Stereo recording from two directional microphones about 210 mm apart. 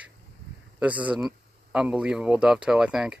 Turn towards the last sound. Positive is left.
turn(degrees=-5)  # may be behind; listen again after turning